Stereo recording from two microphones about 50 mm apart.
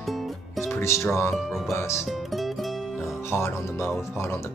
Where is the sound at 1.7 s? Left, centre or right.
Left.